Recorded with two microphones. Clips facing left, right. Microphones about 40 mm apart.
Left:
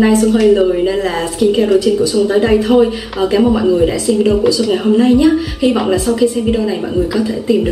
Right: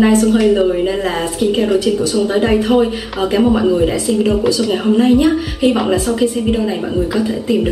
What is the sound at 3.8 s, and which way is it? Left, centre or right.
A woman's voice, centre.